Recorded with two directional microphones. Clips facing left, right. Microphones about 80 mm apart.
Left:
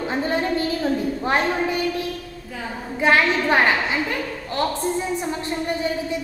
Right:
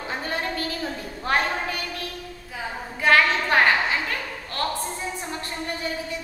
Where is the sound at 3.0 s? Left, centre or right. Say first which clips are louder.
Left 1 dB; centre.